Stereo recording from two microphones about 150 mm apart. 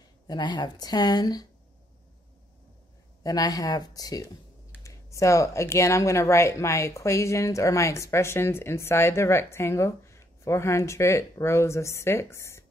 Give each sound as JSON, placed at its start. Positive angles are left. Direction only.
{"t": 0.3, "sound": "speech", "side_deg": 30}
{"t": 3.3, "sound": "speech", "side_deg": 25}